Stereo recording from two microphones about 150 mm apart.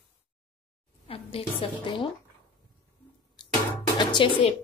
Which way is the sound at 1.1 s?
40° left (ahead or behind).